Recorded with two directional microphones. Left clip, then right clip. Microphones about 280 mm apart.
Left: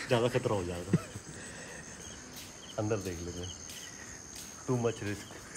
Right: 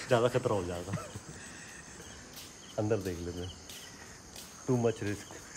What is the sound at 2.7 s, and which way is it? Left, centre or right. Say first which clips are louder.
Speech: right 2 dB; right.